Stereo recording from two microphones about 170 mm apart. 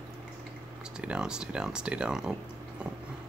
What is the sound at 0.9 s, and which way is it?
Speech, 5° right (ahead or behind).